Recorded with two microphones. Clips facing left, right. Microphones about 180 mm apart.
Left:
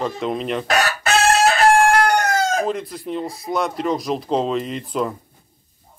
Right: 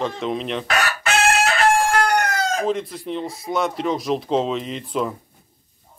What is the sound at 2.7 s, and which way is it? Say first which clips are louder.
A man's voice: right 1 dB; centre (ahead or behind).